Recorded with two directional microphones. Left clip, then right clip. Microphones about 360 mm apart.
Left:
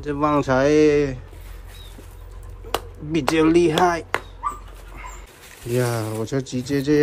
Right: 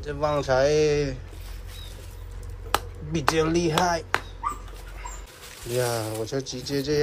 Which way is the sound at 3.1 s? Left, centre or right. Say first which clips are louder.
Left 6 dB; centre.